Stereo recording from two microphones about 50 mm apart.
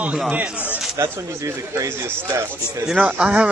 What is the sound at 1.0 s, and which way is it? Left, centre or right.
Speech, right.